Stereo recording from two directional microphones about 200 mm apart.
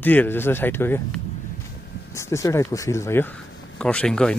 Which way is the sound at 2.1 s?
15° left (ahead or behind).